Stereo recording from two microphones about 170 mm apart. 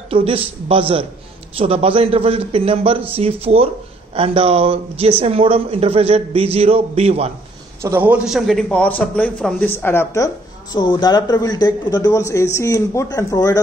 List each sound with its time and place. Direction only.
0.1 s a man's voice: 35° right (ahead or behind)
7.8 s a man's voice: 15° right (ahead or behind); by 13.6 s 20° left (ahead or behind)